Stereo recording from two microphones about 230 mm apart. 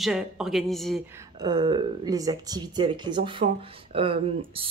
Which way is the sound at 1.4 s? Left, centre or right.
Centre.